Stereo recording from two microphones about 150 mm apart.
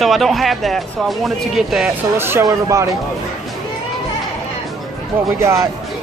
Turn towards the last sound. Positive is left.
turn(degrees=-20)  # may be behind; listen again after turning